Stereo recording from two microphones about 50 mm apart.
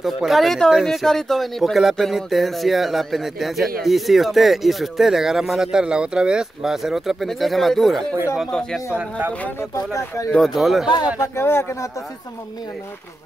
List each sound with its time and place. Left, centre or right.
0.0 s speech: centre
9.9 s speech: left
10.4 s speech: centre
11.1 s speech: left